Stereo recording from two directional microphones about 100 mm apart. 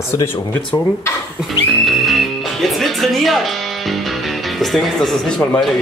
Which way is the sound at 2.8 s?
Centre (ahead or behind).